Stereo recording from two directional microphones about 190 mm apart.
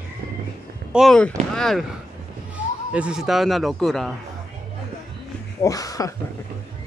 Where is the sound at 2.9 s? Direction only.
5° right (ahead or behind).